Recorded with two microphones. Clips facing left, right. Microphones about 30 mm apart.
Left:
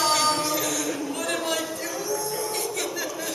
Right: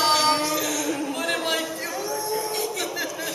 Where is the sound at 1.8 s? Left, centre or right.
Right.